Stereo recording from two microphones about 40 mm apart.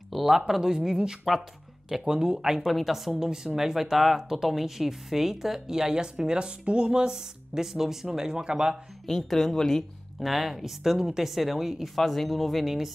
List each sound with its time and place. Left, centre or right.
0.1 s a sound: centre
0.5 s speech: centre
2.6 s speech: centre
3.1 s speech: centre
7.5 s speech: centre
9.0 s speech: centre
10.2 s speech: centre